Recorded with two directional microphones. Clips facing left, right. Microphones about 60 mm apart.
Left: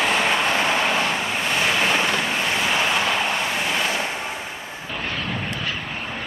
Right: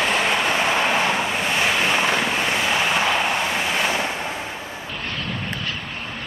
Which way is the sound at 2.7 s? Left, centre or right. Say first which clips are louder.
Right 1 dB; centre.